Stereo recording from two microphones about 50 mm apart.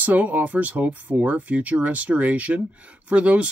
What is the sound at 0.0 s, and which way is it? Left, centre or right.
Speech, right.